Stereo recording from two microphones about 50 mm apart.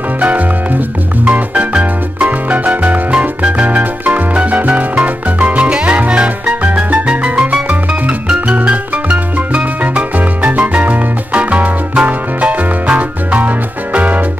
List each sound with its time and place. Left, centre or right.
0.2 s music: right
5.6 s salsa music: right
6.6 s music: right